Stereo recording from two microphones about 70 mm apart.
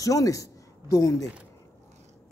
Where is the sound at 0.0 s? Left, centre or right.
Left.